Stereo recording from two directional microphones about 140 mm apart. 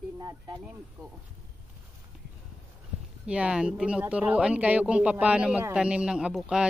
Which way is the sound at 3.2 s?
10° right (ahead or behind).